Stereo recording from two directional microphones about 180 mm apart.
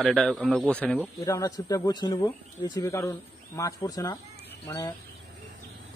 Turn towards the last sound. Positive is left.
turn(degrees=20)  # may be behind; listen again after turning